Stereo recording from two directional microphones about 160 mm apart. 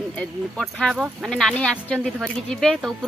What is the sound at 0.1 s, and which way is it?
Speech, 5° left (ahead or behind).